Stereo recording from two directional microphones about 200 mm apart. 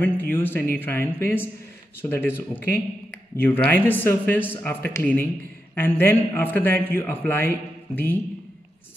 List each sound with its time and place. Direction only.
0.0 s a man's voice: 10° left (ahead or behind)